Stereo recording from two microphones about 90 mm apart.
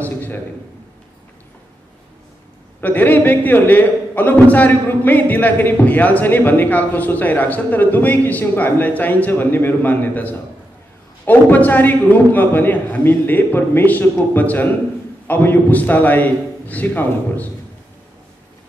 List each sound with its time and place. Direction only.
2.8 s a man's voice: 20° left (ahead or behind)